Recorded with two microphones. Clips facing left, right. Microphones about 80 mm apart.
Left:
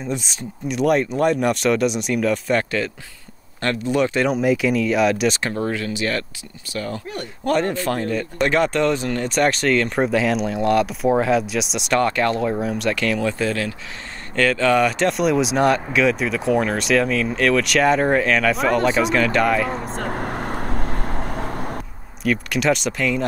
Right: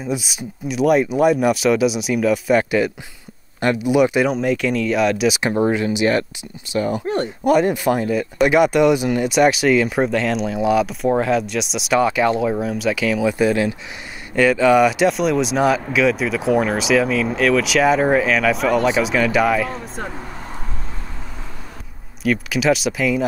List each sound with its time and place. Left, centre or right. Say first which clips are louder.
0.0 s speech: right 2 dB; centre
4.3 s speech: left 1 dB; centre
5.4 s speech: right 6 dB; right; by 19.7 s centre
19.8 s vehicle: left 4 dB; left
22.2 s speech: right 2 dB; centre